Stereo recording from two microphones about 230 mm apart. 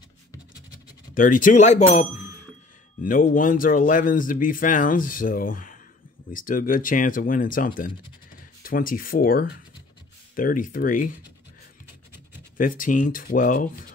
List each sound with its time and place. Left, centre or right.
1.1 s speech: left
12.5 s speech: left